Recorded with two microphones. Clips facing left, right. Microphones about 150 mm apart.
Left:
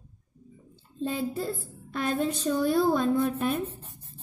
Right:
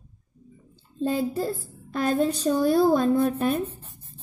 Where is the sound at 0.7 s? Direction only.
40° right (ahead or behind).